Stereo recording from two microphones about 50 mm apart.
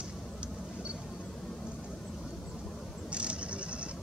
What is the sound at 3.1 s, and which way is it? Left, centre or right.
Vehicle, right.